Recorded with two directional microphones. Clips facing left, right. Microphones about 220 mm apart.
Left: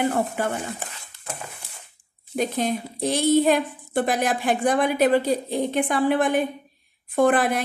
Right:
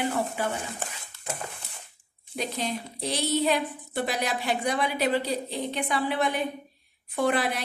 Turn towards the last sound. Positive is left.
turn(degrees=50)  # may be behind; listen again after turning